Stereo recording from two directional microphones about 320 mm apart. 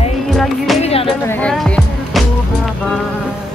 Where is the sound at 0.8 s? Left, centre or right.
Centre.